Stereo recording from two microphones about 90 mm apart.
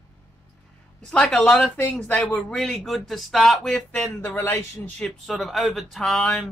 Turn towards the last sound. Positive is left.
turn(degrees=10)  # may be behind; listen again after turning